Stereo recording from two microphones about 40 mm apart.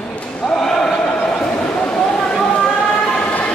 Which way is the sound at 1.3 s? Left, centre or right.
Left.